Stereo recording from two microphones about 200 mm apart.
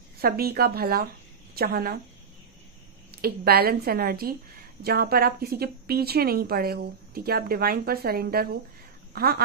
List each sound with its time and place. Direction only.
0.2 s speech: 50° right (ahead or behind)
3.2 s a woman's voice: 50° right (ahead or behind)